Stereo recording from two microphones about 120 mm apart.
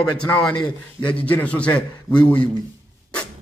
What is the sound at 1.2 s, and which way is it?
A man's voice, 10° left (ahead or behind).